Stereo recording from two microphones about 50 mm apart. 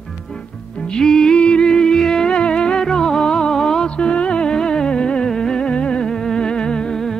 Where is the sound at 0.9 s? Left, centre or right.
Centre.